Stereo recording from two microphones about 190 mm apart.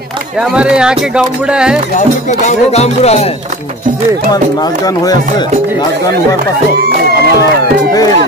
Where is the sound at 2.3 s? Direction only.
35° left (ahead or behind).